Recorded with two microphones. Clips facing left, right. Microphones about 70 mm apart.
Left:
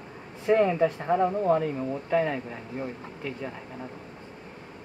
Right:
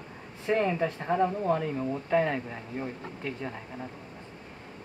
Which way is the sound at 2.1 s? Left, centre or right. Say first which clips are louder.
Even; centre.